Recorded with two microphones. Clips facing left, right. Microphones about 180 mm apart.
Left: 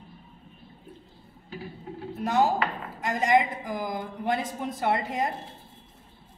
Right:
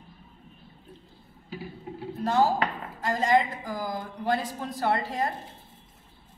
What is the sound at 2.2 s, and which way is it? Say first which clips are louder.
A woman's voice: even; 20° left (ahead or behind).